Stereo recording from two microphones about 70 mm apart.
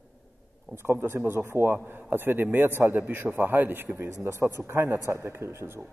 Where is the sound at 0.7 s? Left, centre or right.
Right.